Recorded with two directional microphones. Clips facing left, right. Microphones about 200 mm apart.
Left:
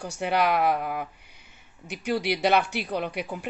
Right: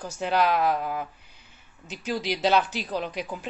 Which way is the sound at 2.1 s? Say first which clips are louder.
Left 1 dB; 10° left (ahead or behind).